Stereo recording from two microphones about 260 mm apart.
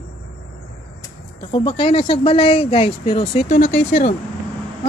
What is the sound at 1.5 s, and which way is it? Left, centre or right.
Speech, left.